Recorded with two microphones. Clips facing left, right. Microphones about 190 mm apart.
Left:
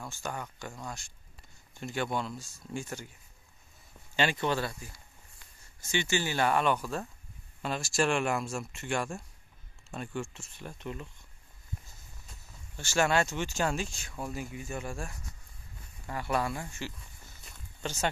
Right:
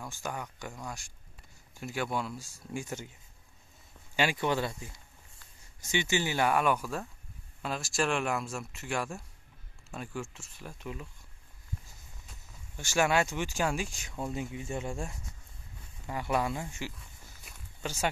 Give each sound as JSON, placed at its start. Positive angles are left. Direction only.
{"t": 0.1, "sound": "speech", "side_deg": -10}
{"t": 4.2, "sound": "speech", "side_deg": -10}
{"t": 12.7, "sound": "speech", "side_deg": -15}
{"t": 17.5, "sound": "walk", "side_deg": -10}